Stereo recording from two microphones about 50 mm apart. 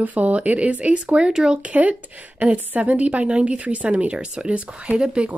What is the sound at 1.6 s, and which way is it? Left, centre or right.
Speech, right.